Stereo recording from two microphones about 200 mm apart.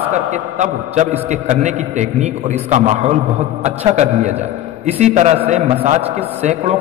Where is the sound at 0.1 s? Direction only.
35° right (ahead or behind).